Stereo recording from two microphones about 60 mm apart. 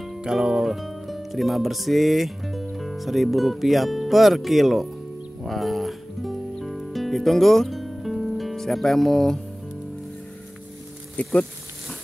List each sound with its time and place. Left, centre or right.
0.2 s music: centre
11.2 s speech: left